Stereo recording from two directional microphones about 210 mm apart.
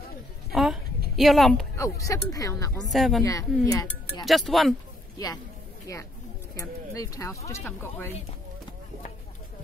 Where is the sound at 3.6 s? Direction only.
15° left (ahead or behind).